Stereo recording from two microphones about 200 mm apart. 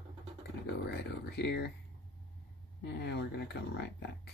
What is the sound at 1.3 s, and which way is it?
Speech, 55° left (ahead or behind).